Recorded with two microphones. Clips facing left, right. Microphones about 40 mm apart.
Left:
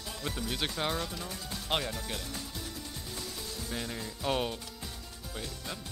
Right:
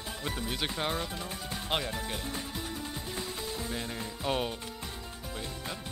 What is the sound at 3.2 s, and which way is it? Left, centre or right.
Music, right.